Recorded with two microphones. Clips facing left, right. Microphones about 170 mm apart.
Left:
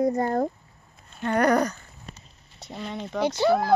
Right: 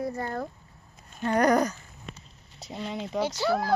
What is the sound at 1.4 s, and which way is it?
Speech, 10° right (ahead or behind).